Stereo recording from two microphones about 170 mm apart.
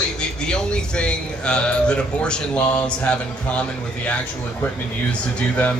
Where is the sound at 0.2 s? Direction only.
5° left (ahead or behind).